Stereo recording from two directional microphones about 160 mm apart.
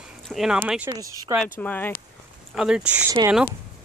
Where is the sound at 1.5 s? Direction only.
10° left (ahead or behind).